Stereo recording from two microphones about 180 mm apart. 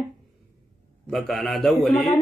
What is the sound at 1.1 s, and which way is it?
A man's voice, centre (ahead or behind).